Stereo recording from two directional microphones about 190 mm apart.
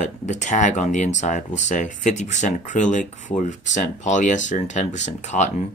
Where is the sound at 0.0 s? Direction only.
40° left (ahead or behind).